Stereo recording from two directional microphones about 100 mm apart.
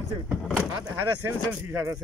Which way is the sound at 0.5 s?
25° right (ahead or behind).